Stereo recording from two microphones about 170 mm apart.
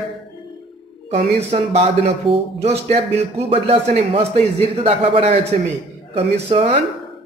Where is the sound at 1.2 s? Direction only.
35° right (ahead or behind).